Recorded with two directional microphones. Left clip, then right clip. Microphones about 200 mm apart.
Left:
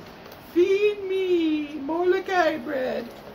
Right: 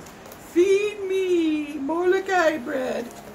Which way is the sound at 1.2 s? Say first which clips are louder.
Even; centre (ahead or behind).